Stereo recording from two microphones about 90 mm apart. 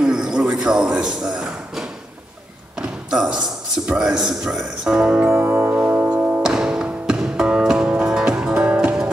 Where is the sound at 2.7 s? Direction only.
10° right (ahead or behind).